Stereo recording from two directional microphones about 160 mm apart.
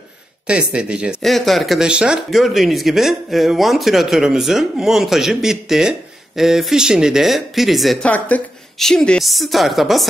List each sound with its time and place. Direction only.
0.5 s speech: 5° right (ahead or behind)